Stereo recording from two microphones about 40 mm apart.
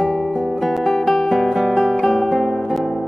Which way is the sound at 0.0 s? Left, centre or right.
Centre.